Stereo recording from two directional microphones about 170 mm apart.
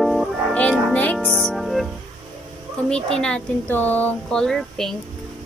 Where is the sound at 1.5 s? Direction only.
Centre (ahead or behind).